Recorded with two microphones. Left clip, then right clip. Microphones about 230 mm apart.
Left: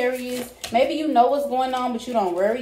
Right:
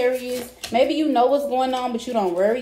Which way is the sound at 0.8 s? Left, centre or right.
Right.